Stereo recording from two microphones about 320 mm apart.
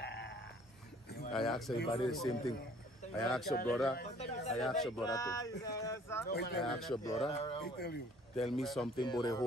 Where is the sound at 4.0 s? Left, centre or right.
Centre.